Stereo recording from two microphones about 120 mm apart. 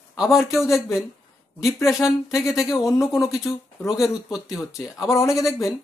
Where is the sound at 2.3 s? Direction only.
5° right (ahead or behind).